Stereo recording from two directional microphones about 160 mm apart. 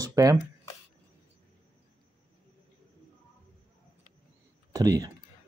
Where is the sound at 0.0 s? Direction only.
20° right (ahead or behind).